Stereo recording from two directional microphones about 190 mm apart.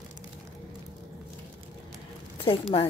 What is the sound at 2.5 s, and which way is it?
Speech, 30° left (ahead or behind).